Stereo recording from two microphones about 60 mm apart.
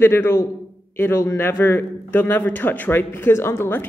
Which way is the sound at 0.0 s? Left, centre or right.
Left.